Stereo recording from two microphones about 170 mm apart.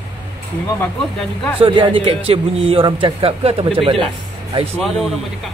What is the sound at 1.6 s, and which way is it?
A man's voice, 30° right (ahead or behind).